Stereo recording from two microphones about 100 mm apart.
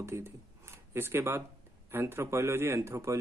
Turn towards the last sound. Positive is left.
turn(degrees=-30)  # may be behind; listen again after turning